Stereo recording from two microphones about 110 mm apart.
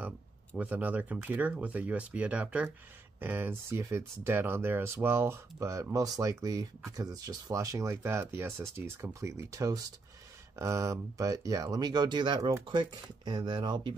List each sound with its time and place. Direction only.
0.6 s speech: 15° right (ahead or behind); by 13.9 s 45° right (ahead or behind)